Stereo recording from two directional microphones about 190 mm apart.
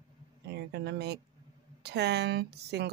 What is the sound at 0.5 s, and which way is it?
Speech, 60° right (ahead or behind).